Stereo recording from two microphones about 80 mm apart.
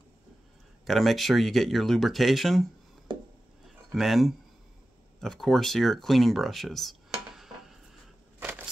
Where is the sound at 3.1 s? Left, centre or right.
Right.